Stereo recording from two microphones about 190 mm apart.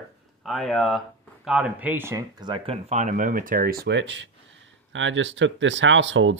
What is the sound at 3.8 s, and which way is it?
Speech, 70° right (ahead or behind).